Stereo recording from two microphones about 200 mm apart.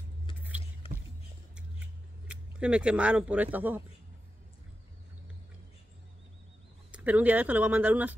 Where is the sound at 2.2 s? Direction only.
5° right (ahead or behind).